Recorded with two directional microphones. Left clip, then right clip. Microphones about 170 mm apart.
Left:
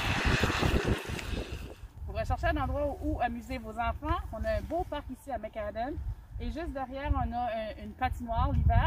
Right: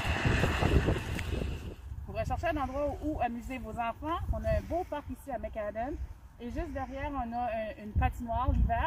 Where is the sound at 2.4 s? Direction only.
5° right (ahead or behind).